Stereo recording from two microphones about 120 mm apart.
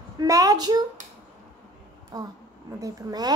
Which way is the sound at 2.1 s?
30° right (ahead or behind).